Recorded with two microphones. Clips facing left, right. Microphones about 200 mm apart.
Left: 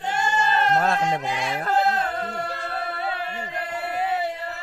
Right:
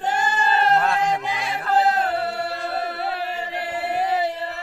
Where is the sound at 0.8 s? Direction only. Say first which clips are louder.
Right 1 dB; 35° left (ahead or behind).